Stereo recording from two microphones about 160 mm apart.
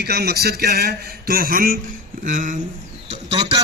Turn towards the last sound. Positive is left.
turn(degrees=-40)  # may be behind; listen again after turning